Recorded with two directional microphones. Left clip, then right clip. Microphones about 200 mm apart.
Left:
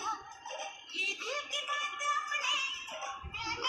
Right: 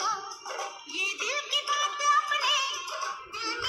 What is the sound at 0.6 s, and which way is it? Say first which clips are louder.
Music: right 4 dB; 45° right (ahead or behind).